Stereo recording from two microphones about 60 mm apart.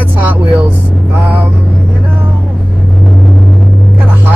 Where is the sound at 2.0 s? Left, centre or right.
Right.